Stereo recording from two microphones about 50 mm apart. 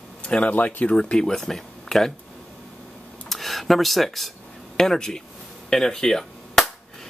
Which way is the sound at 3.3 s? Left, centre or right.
Centre.